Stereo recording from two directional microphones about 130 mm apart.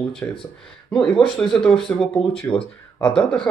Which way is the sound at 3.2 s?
5° left (ahead or behind).